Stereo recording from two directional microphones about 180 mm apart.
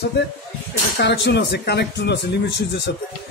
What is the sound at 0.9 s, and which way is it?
A man's voice, 75° left (ahead or behind).